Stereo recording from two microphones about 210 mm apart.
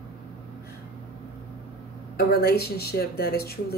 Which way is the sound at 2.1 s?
50° left (ahead or behind).